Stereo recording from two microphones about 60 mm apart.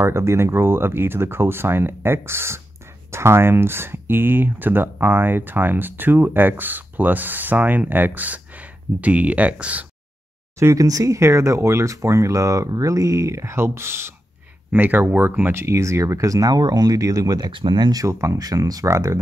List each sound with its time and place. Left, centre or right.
0.0 s speech: right
10.6 s speech: right
11.1 s speech: right
14.7 s speech: right
18.0 s speech: right
18.4 s speech: right
18.9 s speech: right